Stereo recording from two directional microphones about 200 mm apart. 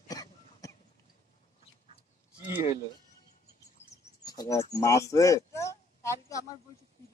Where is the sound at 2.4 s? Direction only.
25° left (ahead or behind).